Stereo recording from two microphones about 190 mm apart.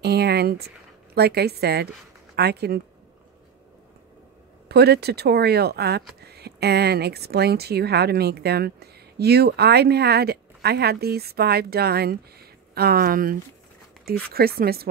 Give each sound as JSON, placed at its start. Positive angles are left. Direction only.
{"t": 0.0, "sound": "speech", "side_deg": -60}
{"t": 4.6, "sound": "speech", "side_deg": -60}